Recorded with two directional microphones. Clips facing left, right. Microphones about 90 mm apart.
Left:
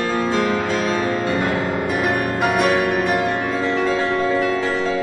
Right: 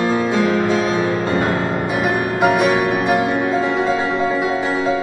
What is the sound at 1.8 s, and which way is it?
Music, 15° right (ahead or behind).